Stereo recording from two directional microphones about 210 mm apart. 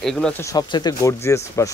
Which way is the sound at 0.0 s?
Centre (ahead or behind).